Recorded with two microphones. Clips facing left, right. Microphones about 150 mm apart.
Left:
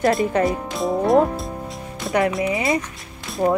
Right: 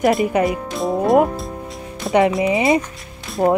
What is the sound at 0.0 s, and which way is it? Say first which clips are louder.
Speech: right 2 dB; 5° right (ahead or behind).